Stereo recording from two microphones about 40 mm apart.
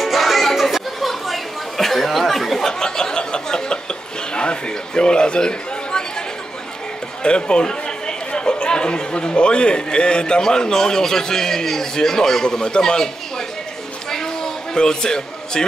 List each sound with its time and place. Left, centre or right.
0.0 s music: centre
2.8 s chuckle: centre
4.3 s chatter: left
7.2 s speech: left
14.1 s a sound: centre